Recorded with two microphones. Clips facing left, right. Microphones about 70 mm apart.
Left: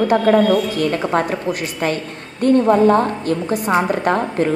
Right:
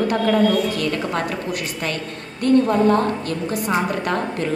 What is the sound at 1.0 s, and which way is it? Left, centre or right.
A woman's voice, left.